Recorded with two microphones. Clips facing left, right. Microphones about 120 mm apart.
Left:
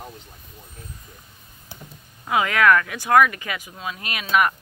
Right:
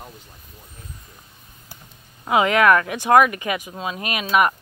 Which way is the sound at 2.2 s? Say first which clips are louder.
Right 2 dB; 20° right (ahead or behind).